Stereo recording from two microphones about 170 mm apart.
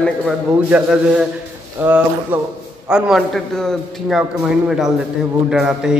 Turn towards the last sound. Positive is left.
turn(degrees=-5)  # may be behind; listen again after turning